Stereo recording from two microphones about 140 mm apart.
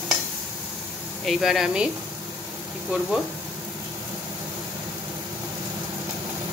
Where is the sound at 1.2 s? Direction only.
Centre (ahead or behind).